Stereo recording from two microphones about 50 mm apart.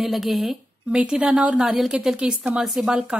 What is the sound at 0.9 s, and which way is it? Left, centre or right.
A woman's voice, right.